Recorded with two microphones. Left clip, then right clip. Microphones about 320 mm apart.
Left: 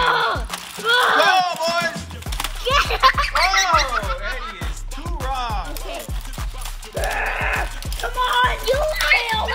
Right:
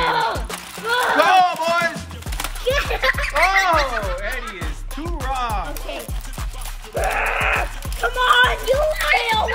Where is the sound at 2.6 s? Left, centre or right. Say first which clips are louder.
Left 4 dB; centre.